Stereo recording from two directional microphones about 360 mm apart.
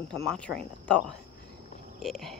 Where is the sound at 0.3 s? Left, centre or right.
Centre.